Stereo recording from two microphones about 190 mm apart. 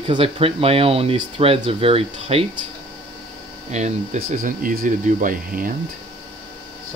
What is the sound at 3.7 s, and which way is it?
Speech, 40° right (ahead or behind).